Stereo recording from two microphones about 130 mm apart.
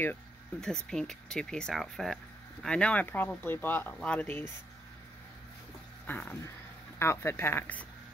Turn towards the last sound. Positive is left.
turn(degrees=15)  # may be behind; listen again after turning